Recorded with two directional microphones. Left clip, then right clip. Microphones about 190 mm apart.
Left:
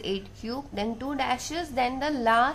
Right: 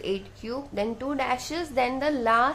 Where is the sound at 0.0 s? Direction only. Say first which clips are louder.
Right 1 dB; 20° right (ahead or behind).